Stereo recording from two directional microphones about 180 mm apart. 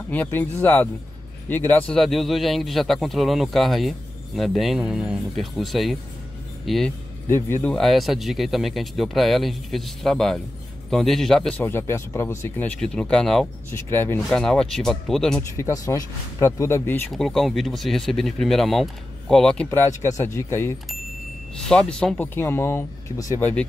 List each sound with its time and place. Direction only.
0.1 s speech: 10° left (ahead or behind)
7.2 s speech: 15° left (ahead or behind)
13.7 s speech: 15° left (ahead or behind)
15.5 s speech: 20° left (ahead or behind)
17.1 s speech: centre (ahead or behind)
21.5 s speech: 5° left (ahead or behind)